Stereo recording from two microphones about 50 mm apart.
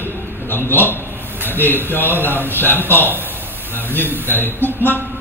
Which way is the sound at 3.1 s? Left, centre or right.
Right.